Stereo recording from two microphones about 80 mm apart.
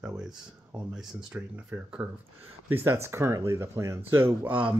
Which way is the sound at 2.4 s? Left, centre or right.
Right.